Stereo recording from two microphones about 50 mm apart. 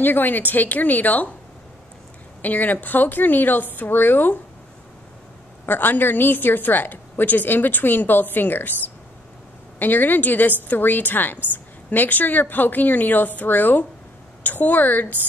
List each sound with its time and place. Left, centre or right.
0.0 s a woman's voice: left
2.4 s a woman's voice: left
5.7 s a woman's voice: left
9.8 s a woman's voice: left